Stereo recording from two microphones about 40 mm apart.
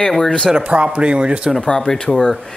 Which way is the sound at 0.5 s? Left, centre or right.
Right.